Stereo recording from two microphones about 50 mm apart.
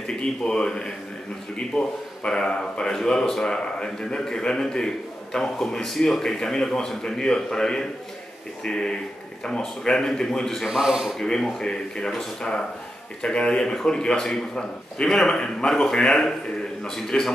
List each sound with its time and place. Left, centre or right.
0.2 s speech: centre
10.7 s speech: centre
11.1 s speech: centre